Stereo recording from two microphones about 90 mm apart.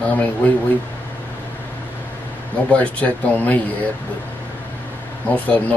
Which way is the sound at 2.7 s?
15° left (ahead or behind).